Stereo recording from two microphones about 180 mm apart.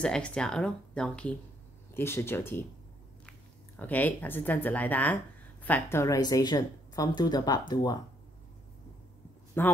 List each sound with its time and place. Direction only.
0.0 s a woman's voice: 5° left (ahead or behind); by 8.0 s 25° left (ahead or behind)
9.6 s speech: 10° left (ahead or behind)